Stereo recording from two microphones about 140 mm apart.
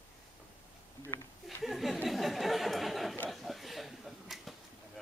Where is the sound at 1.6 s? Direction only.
Centre (ahead or behind).